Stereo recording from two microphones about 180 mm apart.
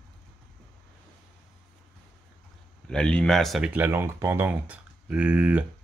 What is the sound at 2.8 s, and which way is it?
Speech, 5° left (ahead or behind).